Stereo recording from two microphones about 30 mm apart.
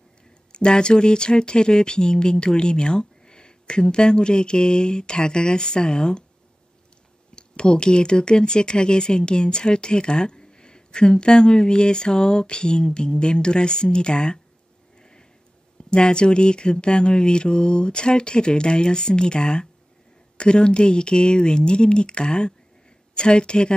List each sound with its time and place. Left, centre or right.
0.5 s speech: left
7.3 s speech: left
15.0 s sniff: left
15.9 s speech: left